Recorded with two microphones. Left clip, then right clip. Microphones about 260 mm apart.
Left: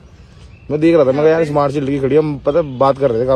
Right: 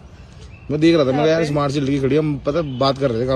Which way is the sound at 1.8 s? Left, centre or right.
Centre.